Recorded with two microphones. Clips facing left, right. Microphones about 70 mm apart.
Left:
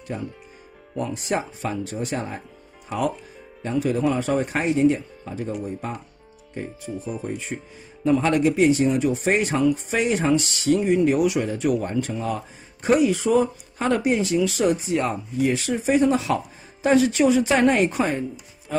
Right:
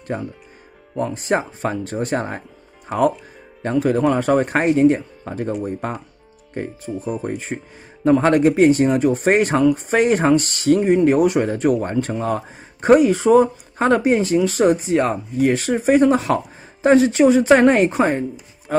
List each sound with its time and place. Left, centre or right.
0.1 s speech: right